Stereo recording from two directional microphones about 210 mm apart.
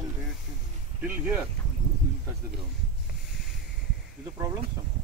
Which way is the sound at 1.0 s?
5° right (ahead or behind).